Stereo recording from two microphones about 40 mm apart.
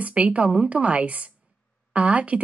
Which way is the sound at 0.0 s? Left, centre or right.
Right.